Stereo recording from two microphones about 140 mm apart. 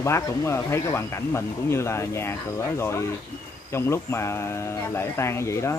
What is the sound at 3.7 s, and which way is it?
Speech, 20° left (ahead or behind).